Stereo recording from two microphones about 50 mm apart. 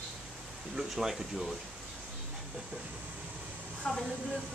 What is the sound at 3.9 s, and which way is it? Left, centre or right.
Speech, centre.